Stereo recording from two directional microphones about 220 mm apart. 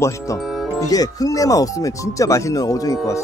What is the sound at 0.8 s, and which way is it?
Speech, 15° left (ahead or behind).